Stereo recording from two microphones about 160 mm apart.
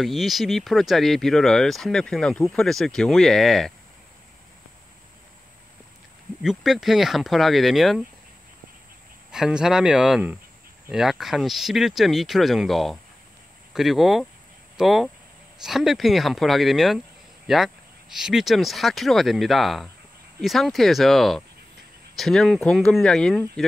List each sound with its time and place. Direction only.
0.0 s speech: centre (ahead or behind)
6.4 s speech: centre (ahead or behind)
9.3 s speech: 5° right (ahead or behind)
18.1 s speech: centre (ahead or behind)